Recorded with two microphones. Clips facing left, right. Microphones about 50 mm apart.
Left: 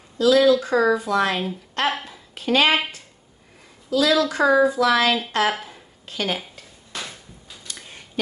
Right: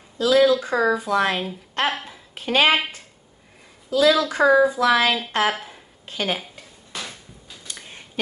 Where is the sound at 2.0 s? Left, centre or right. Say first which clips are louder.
Left 3 dB; right.